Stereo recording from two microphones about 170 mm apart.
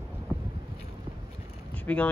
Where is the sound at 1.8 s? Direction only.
10° left (ahead or behind).